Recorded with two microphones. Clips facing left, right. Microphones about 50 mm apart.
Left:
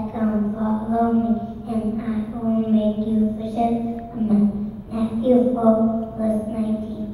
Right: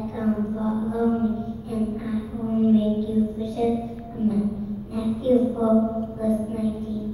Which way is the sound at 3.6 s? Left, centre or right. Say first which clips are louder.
Left 3 dB; left.